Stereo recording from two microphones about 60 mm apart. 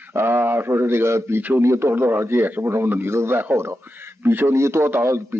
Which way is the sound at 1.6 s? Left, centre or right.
Right.